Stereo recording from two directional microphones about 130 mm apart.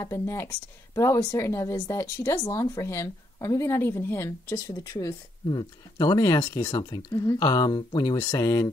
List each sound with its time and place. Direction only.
0.0 s a woman's voice: 20° left (ahead or behind)